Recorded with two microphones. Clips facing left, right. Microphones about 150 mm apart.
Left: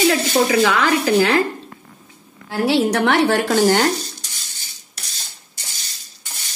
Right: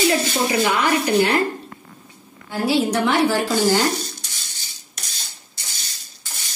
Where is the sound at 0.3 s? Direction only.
90° left.